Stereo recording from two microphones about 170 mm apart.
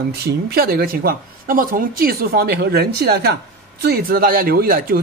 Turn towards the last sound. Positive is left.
turn(degrees=-60)  # may be behind; listen again after turning